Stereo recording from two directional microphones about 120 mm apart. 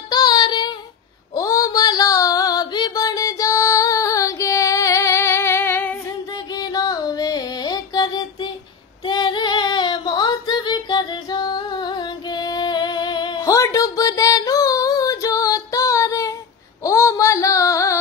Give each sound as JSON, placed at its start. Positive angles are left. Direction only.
{"t": 0.1, "sound": "child singing", "side_deg": 35}
{"t": 1.3, "sound": "a sound", "side_deg": 30}
{"t": 6.3, "sound": "music", "side_deg": 30}
{"t": 9.0, "sound": "female singing", "side_deg": 35}
{"t": 13.5, "sound": "a sound", "side_deg": 25}
{"t": 16.8, "sound": "female singing", "side_deg": 25}